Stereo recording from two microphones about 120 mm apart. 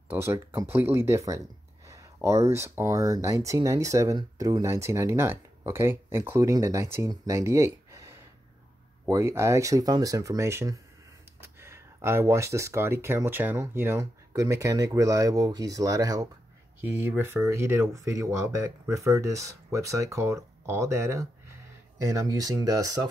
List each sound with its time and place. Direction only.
0.1 s speech: 20° right (ahead or behind)
16.8 s speech: 20° right (ahead or behind)